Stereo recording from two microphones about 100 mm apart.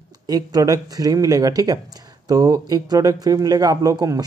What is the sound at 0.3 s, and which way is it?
Speech, 40° right (ahead or behind).